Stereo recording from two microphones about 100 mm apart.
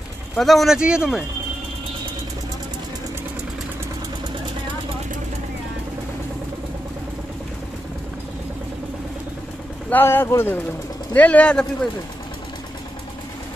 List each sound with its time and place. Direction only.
0.4 s speech: centre (ahead or behind)
9.8 s speech: 20° left (ahead or behind)
11.1 s speech: 15° left (ahead or behind)